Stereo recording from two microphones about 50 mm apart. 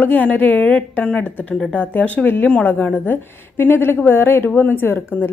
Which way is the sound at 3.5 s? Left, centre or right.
Left.